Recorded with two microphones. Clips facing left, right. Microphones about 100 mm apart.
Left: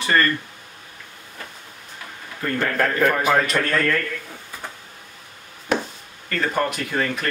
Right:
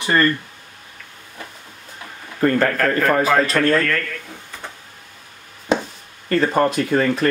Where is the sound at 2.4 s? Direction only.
50° right (ahead or behind).